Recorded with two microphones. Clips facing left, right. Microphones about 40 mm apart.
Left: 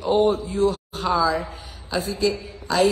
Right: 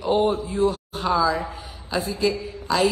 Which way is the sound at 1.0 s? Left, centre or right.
Centre.